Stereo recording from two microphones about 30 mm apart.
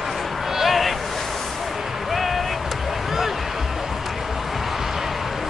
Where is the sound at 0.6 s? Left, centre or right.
Centre.